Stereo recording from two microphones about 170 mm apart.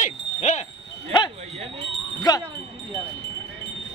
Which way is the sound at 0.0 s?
40° left (ahead or behind).